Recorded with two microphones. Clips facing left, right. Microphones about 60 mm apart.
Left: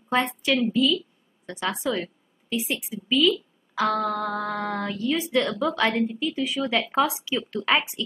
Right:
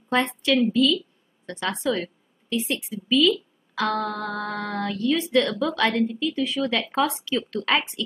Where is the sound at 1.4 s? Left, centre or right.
Centre.